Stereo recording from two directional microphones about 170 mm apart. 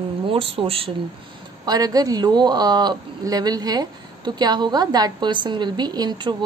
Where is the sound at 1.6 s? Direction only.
20° right (ahead or behind).